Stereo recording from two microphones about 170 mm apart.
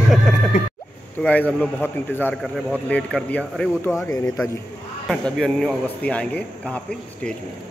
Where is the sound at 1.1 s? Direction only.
10° left (ahead or behind).